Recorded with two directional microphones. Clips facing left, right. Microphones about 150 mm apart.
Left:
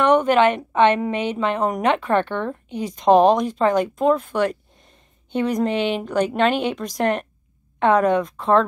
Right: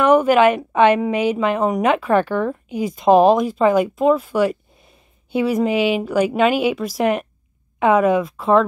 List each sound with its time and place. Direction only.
0.0 s a woman's voice: 5° right (ahead or behind)